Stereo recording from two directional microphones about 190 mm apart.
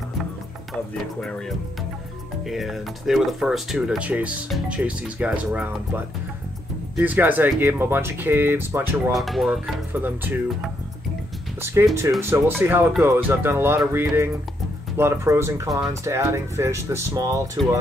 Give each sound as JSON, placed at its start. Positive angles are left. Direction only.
{"t": 1.2, "sound": "speech", "side_deg": 0}
{"t": 9.1, "sound": "speech", "side_deg": 0}
{"t": 11.6, "sound": "speech", "side_deg": -15}